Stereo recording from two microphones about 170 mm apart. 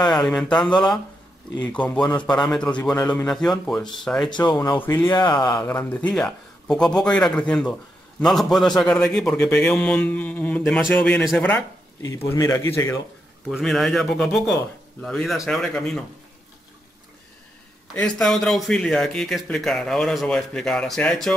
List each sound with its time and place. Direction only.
0.0 s a man's voice: centre (ahead or behind)
0.7 s speech: 25° left (ahead or behind)
1.7 s speech: 10° left (ahead or behind)
2.0 s speech: 25° left (ahead or behind)
2.2 s a man's voice: 5° left (ahead or behind)
4.3 s speech: 25° left (ahead or behind)
4.7 s speech: 15° left (ahead or behind)
5.0 s speech: 25° left (ahead or behind)
5.7 s a man's voice: 10° left (ahead or behind)
12.3 s speech: 20° left (ahead or behind)
13.5 s a man's voice: centre (ahead or behind)
17.9 s a man's voice: 5° left (ahead or behind)